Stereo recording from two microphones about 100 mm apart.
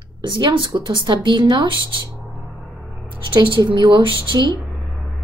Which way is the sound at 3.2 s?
55° right (ahead or behind).